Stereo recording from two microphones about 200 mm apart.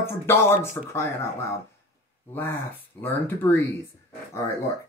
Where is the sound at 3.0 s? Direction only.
10° left (ahead or behind).